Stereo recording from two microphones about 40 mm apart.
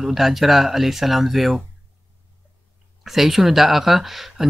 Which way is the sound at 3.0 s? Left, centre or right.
Centre.